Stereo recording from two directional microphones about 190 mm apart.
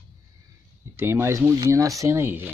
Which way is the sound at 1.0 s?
15° right (ahead or behind).